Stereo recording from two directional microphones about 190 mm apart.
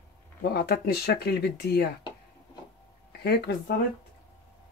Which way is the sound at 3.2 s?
60° left (ahead or behind).